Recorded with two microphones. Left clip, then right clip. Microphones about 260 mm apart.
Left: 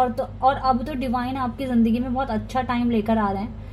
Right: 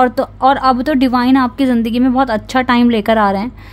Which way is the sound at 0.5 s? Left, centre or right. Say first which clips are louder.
Right 9 dB; right.